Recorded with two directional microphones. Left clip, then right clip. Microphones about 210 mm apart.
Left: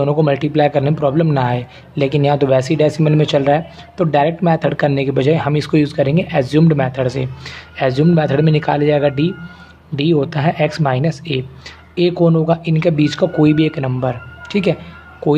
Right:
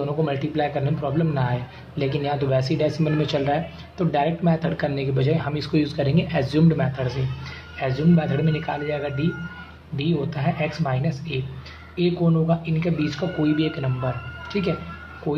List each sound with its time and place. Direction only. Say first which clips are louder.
0.0 s speech: left 10 dB; 50° left (ahead or behind)